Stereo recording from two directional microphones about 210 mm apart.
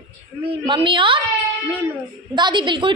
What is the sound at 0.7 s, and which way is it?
Speech, 25° right (ahead or behind).